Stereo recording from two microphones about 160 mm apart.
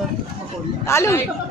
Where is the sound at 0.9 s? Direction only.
20° left (ahead or behind).